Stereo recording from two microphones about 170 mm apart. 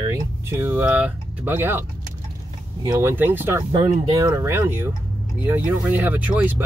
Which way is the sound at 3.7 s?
25° right (ahead or behind).